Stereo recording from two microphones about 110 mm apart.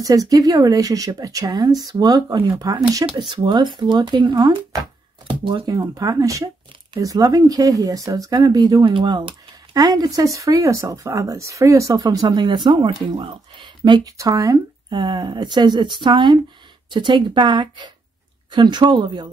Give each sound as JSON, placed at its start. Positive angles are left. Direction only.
{"t": 0.0, "sound": "speech", "side_deg": -30}
{"t": 5.2, "sound": "a sound", "side_deg": -50}
{"t": 5.7, "sound": "speech", "side_deg": -35}
{"t": 8.8, "sound": "speech", "side_deg": -45}
{"t": 9.8, "sound": "speech", "side_deg": -35}